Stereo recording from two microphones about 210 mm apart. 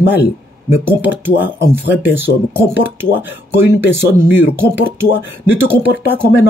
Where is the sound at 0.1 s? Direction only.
10° right (ahead or behind).